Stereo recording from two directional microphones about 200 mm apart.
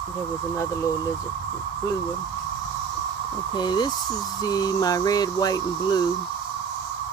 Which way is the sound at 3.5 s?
20° left (ahead or behind).